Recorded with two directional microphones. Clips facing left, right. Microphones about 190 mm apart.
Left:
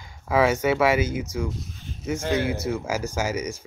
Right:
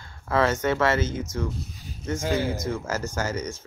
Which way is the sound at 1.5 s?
Centre (ahead or behind).